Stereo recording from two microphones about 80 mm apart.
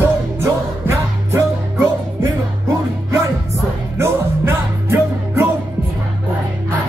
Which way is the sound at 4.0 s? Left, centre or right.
Right.